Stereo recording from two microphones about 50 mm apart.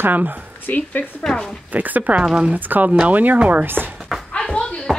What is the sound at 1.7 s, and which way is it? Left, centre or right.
Speech, right.